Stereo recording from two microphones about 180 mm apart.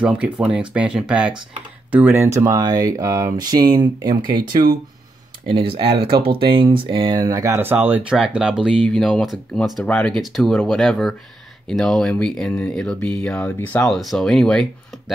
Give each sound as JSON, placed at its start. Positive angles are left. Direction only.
{"t": 0.0, "sound": "speech", "side_deg": -5}